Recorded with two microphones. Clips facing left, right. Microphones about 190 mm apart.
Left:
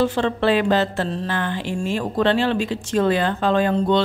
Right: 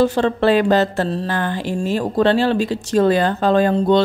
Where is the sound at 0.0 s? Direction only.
40° right (ahead or behind).